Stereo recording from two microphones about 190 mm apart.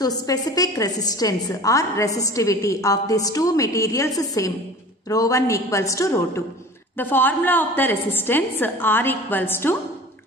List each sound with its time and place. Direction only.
0.0 s a woman's voice: 20° left (ahead or behind)